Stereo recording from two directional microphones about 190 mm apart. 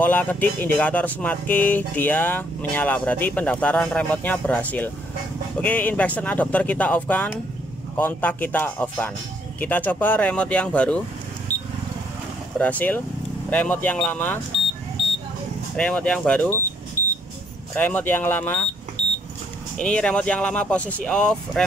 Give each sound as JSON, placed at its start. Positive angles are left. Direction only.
{"t": 0.0, "sound": "speech", "side_deg": 10}
{"t": 12.5, "sound": "speech", "side_deg": 10}
{"t": 15.7, "sound": "speech", "side_deg": 5}
{"t": 17.0, "sound": "vehicle", "side_deg": 45}
{"t": 17.7, "sound": "speech", "side_deg": 10}
{"t": 19.8, "sound": "speech", "side_deg": 5}